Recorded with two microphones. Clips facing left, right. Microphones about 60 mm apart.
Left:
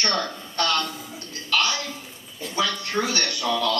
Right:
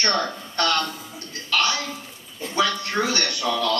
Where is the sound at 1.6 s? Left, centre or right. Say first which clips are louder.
Right 3 dB; right.